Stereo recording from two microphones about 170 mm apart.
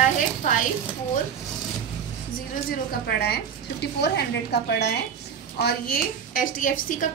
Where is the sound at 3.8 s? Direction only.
80° left.